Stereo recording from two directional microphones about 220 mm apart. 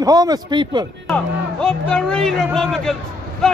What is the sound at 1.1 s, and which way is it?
A man's voice, 5° left (ahead or behind).